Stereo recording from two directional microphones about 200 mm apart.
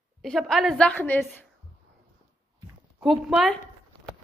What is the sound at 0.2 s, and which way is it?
A woman's voice, centre (ahead or behind).